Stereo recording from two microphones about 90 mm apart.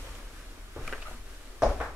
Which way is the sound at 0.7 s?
Centre (ahead or behind).